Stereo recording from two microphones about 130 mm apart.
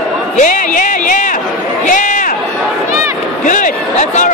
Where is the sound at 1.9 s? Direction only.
80° left.